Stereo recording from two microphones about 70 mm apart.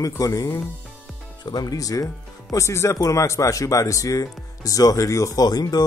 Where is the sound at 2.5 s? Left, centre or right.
Left.